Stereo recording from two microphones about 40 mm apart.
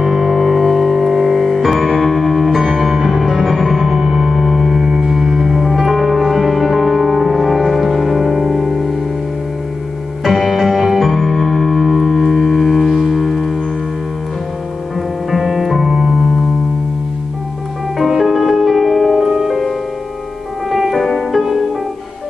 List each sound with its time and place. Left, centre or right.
0.0 s music: centre
10.3 s music: centre
15.3 s music: centre
17.9 s music: centre
20.7 s music: centre